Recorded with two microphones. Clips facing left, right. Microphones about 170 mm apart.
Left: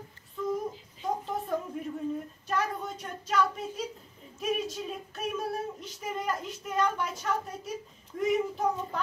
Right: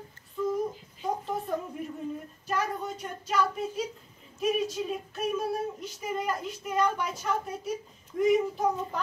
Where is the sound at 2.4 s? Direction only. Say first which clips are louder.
Right 1 dB; centre (ahead or behind).